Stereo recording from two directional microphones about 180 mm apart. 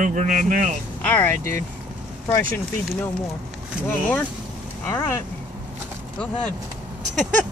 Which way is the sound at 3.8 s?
10° left (ahead or behind).